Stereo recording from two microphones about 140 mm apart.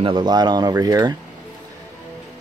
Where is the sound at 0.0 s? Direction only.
35° right (ahead or behind).